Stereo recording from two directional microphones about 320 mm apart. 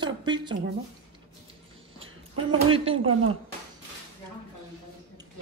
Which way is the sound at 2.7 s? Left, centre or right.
Centre.